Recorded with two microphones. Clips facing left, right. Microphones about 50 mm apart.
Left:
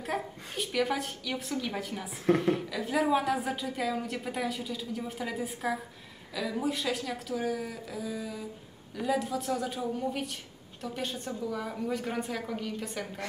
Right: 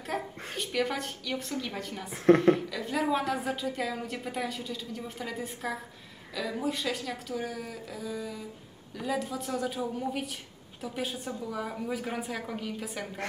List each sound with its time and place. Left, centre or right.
0.0 s a woman's voice: centre
2.2 s a woman's voice: right
2.5 s a woman's voice: centre